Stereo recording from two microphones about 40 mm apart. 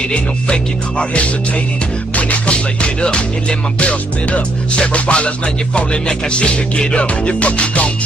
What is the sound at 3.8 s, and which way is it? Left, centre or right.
Music, left.